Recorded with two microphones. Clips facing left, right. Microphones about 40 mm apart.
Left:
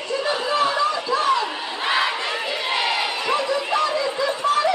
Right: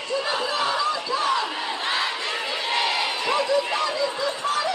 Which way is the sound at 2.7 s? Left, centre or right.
Centre.